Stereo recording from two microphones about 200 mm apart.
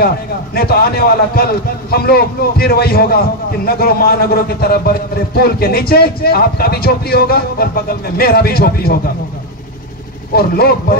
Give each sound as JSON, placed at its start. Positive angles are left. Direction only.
{"t": 0.6, "sound": "a man's voice", "side_deg": 50}
{"t": 10.3, "sound": "a man's voice", "side_deg": 50}